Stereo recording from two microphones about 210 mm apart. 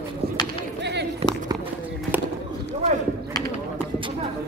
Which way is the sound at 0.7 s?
55° right (ahead or behind).